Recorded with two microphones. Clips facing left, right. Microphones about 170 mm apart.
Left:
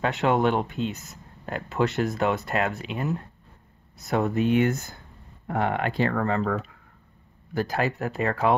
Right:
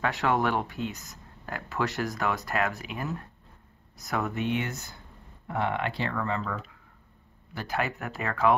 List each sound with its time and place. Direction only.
0.0 s speech: 20° left (ahead or behind); by 6.6 s 55° left (ahead or behind)
7.5 s speech: 40° left (ahead or behind)